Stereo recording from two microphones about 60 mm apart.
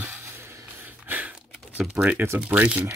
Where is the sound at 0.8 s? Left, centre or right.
Right.